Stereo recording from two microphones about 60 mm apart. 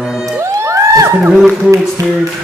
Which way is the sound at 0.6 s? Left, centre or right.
Right.